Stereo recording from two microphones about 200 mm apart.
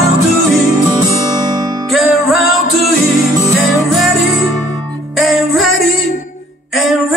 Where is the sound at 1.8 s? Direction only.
Centre (ahead or behind).